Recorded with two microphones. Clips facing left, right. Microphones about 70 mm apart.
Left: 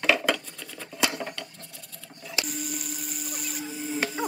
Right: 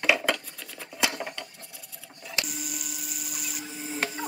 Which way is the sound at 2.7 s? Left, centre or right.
Left.